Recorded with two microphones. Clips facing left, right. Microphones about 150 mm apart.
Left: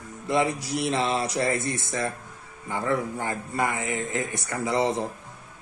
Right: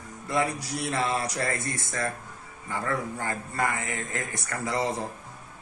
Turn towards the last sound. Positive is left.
turn(degrees=20)  # may be behind; listen again after turning